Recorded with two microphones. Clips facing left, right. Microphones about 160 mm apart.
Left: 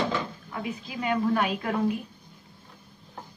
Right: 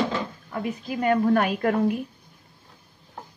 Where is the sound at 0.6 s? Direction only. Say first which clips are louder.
Right 6 dB; 50° right (ahead or behind).